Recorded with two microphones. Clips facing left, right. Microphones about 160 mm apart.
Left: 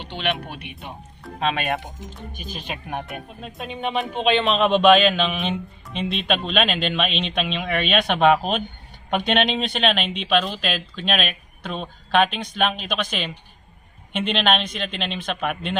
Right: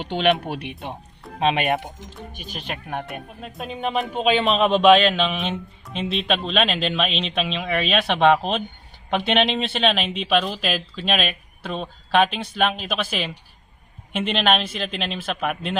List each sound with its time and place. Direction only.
0.1 s speech: 45° right (ahead or behind)
1.4 s speech: 20° right (ahead or behind)
2.6 s speech: 5° left (ahead or behind)